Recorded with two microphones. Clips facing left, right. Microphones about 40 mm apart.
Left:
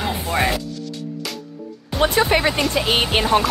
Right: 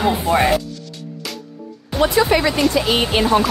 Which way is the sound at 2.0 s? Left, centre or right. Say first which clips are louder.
Right 2 dB; left.